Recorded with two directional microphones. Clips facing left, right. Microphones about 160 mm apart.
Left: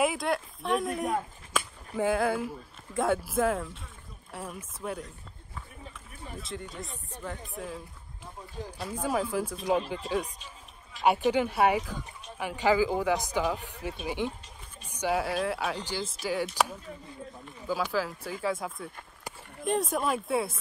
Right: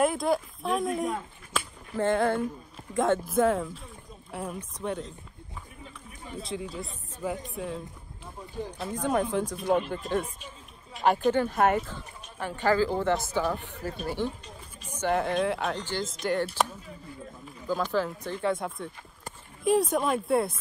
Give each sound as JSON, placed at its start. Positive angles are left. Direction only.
{"t": 0.0, "sound": "speech", "side_deg": 0}
{"t": 6.4, "sound": "speech", "side_deg": 0}
{"t": 11.9, "sound": "speech", "side_deg": 10}